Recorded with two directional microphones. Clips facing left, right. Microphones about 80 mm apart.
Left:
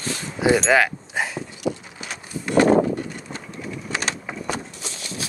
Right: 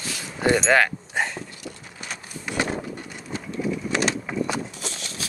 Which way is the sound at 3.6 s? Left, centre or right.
Centre.